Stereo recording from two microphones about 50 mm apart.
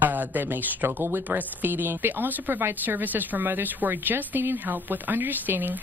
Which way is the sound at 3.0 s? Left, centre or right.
Right.